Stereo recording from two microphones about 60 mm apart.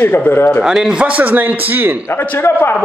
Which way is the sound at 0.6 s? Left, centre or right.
Centre.